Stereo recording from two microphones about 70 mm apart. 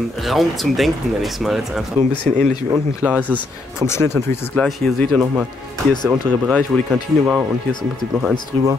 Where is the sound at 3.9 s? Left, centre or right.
Left.